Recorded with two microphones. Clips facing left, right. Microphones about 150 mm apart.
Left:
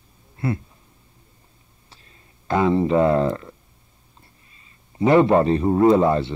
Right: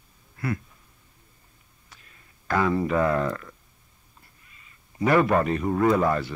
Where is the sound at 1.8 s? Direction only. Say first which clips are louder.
Left 2 dB; 30° left (ahead or behind).